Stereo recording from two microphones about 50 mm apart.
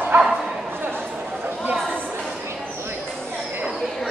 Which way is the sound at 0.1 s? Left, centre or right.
Right.